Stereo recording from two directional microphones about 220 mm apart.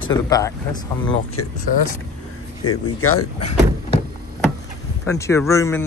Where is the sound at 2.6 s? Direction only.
90° left.